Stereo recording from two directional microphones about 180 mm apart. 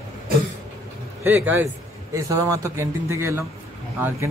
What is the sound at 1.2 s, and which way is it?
A man's voice, 10° right (ahead or behind).